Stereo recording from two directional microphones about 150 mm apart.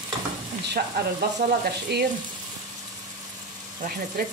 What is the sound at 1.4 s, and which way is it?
Speech, 90° right.